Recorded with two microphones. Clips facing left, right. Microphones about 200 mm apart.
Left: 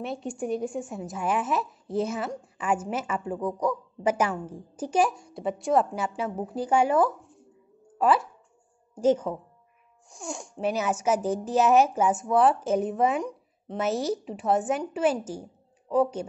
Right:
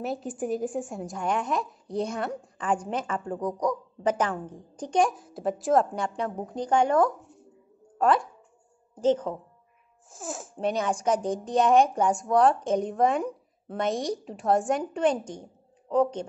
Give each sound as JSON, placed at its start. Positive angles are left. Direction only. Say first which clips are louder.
{"t": 0.0, "sound": "a woman's voice", "louder": "right 1 dB", "side_deg": 0}
{"t": 10.0, "sound": "a woman's voice", "louder": "even", "side_deg": 0}